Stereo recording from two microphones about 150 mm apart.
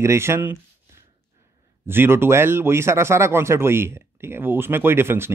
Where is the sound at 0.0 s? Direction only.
20° right (ahead or behind).